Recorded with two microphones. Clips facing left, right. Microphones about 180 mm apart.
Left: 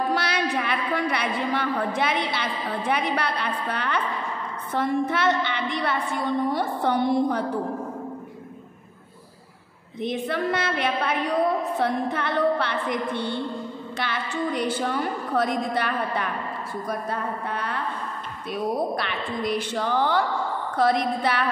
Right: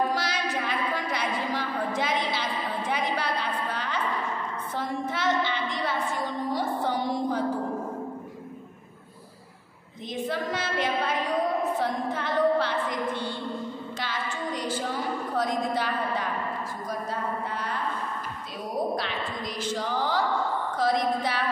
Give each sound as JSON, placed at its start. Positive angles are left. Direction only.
{"t": 0.1, "sound": "a sound", "side_deg": 65}
{"t": 2.9, "sound": "a woman's voice", "side_deg": 65}
{"t": 10.0, "sound": "a woman's voice", "side_deg": 65}
{"t": 18.9, "sound": "a woman's voice", "side_deg": 60}